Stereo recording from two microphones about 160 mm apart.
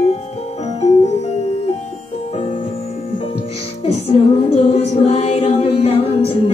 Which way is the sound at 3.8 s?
40° left (ahead or behind).